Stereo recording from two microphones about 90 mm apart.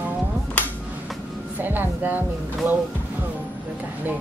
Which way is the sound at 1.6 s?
20° right (ahead or behind).